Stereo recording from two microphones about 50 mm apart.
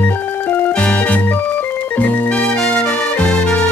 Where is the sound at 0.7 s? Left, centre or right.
Left.